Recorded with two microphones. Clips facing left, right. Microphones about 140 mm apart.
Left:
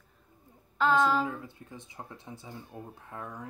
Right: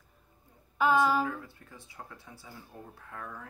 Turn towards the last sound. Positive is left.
turn(degrees=20)  # may be behind; listen again after turning